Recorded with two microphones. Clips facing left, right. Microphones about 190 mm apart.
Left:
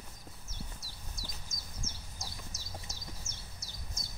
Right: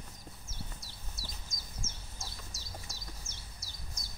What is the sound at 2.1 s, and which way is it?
Bird, 20° left (ahead or behind).